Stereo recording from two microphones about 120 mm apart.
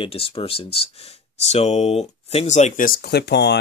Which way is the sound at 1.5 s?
65° left (ahead or behind).